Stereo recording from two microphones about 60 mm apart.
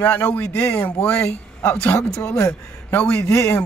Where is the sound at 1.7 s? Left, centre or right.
Left.